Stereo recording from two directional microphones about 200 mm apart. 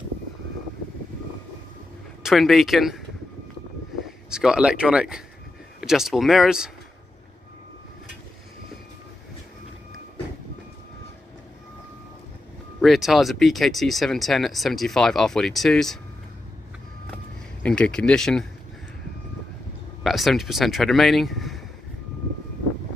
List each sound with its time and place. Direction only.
2.2 s speech: centre (ahead or behind)
4.0 s speech: 5° right (ahead or behind)
12.8 s speech: centre (ahead or behind)
17.6 s speech: 5° left (ahead or behind)
20.0 s speech: centre (ahead or behind)